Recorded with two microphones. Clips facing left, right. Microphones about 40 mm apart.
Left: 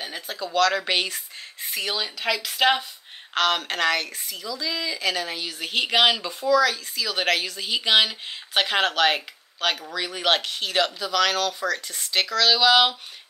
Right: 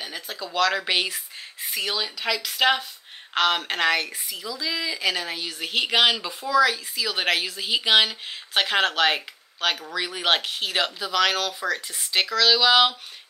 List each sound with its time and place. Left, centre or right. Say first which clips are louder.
0.0 s speech: left 2 dB; centre